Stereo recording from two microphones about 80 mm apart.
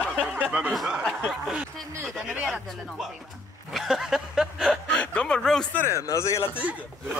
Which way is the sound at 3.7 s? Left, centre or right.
Centre.